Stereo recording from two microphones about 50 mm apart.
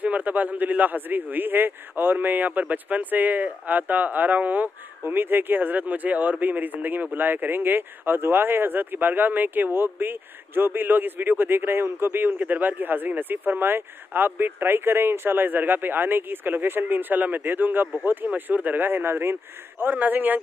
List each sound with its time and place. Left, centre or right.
0.0 s a man's voice: right
5.0 s a man's voice: right